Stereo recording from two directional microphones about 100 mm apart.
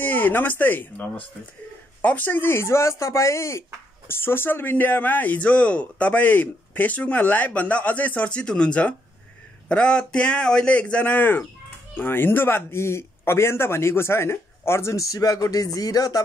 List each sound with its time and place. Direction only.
0.0 s speech: 20° left (ahead or behind); by 16.2 s 35° left (ahead or behind)